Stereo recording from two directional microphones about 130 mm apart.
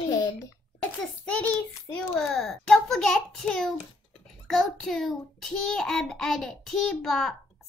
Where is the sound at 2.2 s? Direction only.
Centre (ahead or behind).